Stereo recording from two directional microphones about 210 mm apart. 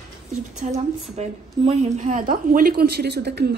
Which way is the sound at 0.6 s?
35° right (ahead or behind).